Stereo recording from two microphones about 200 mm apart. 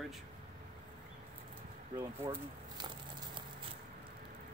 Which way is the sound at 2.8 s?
25° right (ahead or behind).